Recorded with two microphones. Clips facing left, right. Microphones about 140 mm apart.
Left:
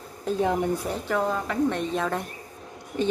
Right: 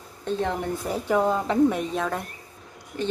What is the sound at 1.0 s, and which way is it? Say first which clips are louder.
Speech: right 5 dB; 15° right (ahead or behind).